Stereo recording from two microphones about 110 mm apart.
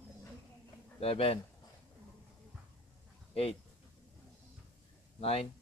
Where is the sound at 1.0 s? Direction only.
65° left (ahead or behind).